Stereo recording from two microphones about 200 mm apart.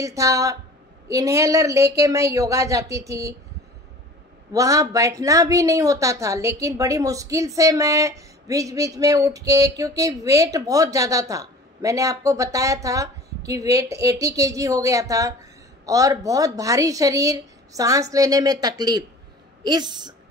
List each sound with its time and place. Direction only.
0.0 s speech: 15° right (ahead or behind)
4.5 s speech: 15° right (ahead or behind)